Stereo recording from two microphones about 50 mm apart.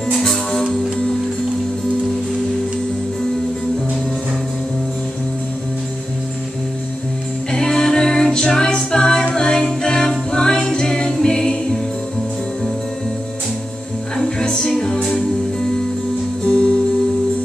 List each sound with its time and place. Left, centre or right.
0.2 s music: centre
7.5 s a capella: centre
14.1 s music: centre
16.4 s music: centre